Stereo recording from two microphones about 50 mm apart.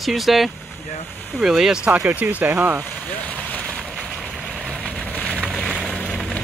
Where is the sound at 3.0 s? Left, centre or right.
Left.